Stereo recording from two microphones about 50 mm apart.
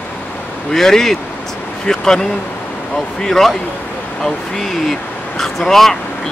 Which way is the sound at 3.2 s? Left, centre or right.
Centre.